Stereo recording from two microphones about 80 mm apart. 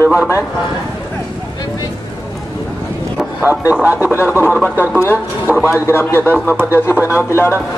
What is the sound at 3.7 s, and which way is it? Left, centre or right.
A man's voice, right.